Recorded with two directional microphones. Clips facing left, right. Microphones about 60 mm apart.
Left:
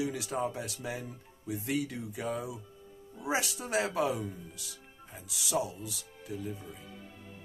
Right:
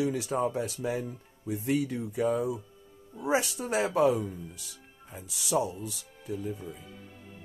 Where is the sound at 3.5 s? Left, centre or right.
Right.